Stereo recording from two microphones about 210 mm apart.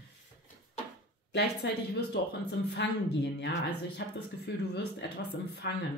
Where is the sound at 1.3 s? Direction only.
50° left (ahead or behind).